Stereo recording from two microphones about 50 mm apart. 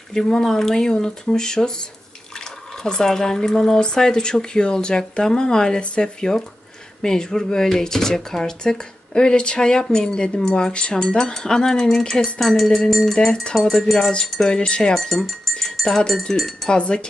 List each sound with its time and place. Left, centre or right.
0.1 s speech: centre
2.8 s speech: centre
13.3 s speech: centre
13.6 s speech: centre
14.4 s speech: centre
15.0 s speech: centre
16.6 s speech: centre